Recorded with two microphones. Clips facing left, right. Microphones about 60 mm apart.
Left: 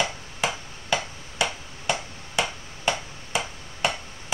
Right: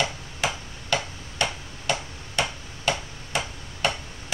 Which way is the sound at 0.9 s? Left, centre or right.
Centre.